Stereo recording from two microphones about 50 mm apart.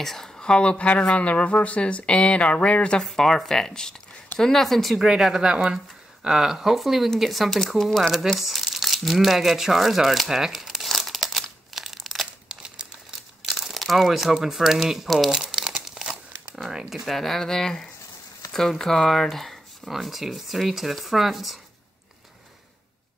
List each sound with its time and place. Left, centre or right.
0.0 s speech: centre
0.4 s speech: centre
3.0 s speech: centre
5.0 s speech: centre
8.1 s crumpling: centre
12.4 s crumpling: centre
13.5 s speech: centre
15.0 s speech: centre
15.3 s crumpling: centre
18.5 s speech: centre